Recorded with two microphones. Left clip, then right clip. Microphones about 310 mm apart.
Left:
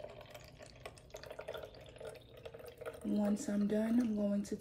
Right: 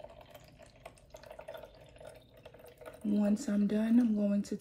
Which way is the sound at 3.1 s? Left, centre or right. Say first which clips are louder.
Right 4 dB; right.